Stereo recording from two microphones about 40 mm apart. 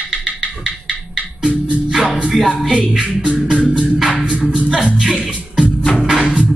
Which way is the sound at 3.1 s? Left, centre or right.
Right.